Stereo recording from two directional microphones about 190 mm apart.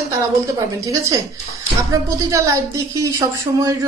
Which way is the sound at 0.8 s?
20° right (ahead or behind).